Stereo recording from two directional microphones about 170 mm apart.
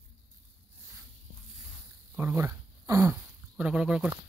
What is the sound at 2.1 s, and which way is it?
Speech, 15° right (ahead or behind).